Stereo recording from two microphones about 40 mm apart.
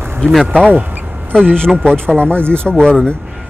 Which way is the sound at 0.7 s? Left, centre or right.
Right.